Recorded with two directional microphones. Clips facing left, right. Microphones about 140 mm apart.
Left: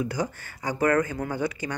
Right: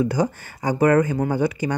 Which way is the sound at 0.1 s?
30° right (ahead or behind).